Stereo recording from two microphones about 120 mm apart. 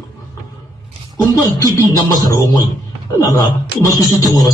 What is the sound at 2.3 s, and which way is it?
Speech, 30° left (ahead or behind).